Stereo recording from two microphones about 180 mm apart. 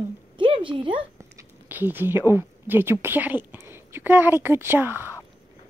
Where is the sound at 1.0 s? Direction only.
15° right (ahead or behind).